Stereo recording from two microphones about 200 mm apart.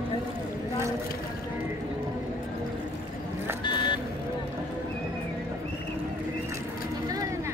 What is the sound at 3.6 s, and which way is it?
Vehicle, 25° left (ahead or behind).